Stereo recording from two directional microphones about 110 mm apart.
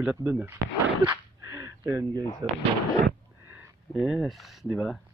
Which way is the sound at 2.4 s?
40° right (ahead or behind).